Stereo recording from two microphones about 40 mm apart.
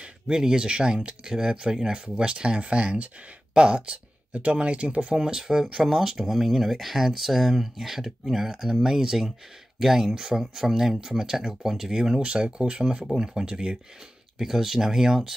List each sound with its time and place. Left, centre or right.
0.0 s speech: centre
5.1 s speech: centre
12.2 s speech: right
13.0 s speech: centre
14.4 s speech: centre